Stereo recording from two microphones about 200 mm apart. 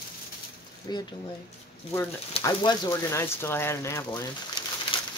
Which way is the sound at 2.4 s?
15° left (ahead or behind).